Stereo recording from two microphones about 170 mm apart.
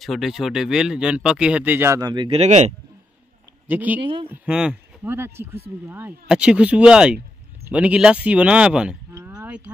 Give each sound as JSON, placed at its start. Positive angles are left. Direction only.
{"t": 0.0, "sound": "speech", "side_deg": 0}
{"t": 2.4, "sound": "speech", "side_deg": -45}
{"t": 3.6, "sound": "speech", "side_deg": -10}
{"t": 4.0, "sound": "speech", "side_deg": -30}
{"t": 4.3, "sound": "speech", "side_deg": -5}
{"t": 9.3, "sound": "a sound", "side_deg": -5}